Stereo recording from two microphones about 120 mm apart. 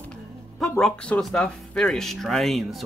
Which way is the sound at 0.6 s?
5° left (ahead or behind).